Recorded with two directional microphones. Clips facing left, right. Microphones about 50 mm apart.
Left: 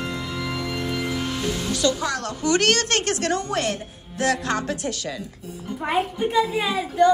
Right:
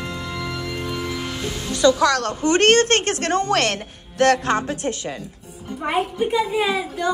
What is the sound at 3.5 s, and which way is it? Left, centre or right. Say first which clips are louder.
Speech: right 5 dB; right.